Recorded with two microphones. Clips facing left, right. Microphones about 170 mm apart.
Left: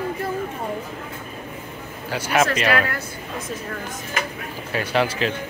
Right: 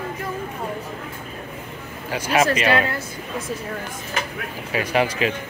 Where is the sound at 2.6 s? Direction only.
25° right (ahead or behind).